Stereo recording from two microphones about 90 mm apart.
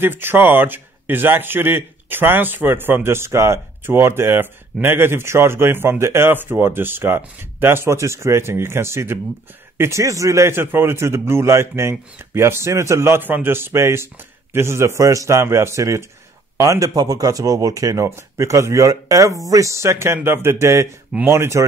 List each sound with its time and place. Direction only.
0.0 s a man's voice: 25° right (ahead or behind)